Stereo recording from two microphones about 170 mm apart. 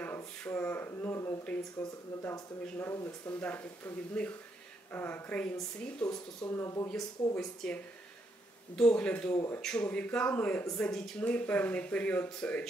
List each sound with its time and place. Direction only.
0.0 s a sound: 10° left (ahead or behind)
2.6 s speech: 15° left (ahead or behind)
7.3 s speech: 5° left (ahead or behind)